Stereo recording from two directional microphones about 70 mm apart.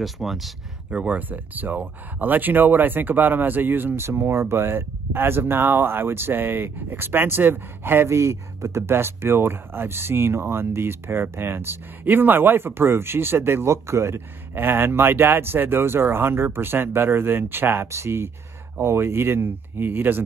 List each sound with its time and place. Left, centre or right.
0.0 s speech: centre
0.8 s speech: centre